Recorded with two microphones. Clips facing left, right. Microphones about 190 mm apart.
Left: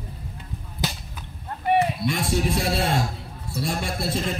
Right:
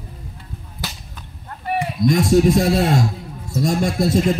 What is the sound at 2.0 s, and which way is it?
A man's voice, 40° right (ahead or behind).